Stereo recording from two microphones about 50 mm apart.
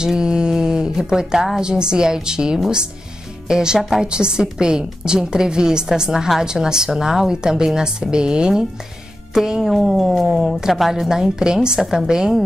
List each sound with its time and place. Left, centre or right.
0.0 s a woman's voice: centre